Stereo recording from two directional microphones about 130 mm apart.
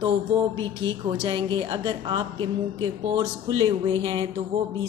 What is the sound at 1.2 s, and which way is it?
Speech, 40° right (ahead or behind).